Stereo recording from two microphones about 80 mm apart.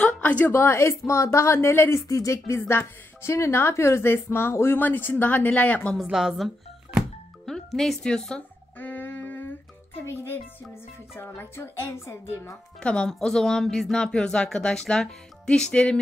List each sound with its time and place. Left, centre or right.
0.0 s a sound: centre
0.5 s speech: left
2.0 s a woman's voice: left; by 5.9 s centre
5.9 s a woman's voice: centre
8.7 s a sound: left
10.1 s speech: left
12.8 s speech: centre